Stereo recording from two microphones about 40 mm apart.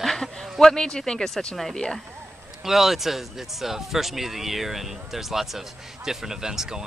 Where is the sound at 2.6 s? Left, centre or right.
Centre.